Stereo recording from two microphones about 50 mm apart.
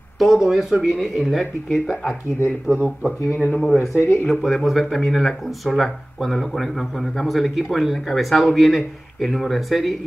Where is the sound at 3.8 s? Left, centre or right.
Left.